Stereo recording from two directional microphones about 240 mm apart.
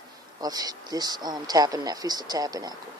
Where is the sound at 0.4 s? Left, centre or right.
Centre.